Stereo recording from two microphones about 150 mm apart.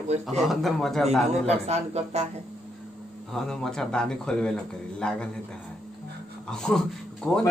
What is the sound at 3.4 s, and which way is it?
A man's voice, 5° left (ahead or behind).